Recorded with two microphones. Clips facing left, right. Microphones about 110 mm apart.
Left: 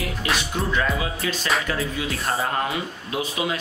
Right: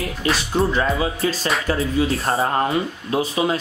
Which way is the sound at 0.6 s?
30° right (ahead or behind).